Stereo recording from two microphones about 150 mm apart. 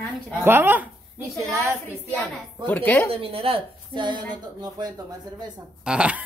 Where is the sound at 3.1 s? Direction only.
40° right (ahead or behind).